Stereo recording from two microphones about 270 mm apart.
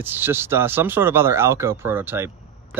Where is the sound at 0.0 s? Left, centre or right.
Centre.